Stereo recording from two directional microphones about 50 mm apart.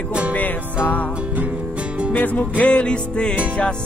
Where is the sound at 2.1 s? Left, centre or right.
Left.